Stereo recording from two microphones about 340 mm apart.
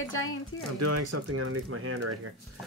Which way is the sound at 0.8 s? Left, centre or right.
Right.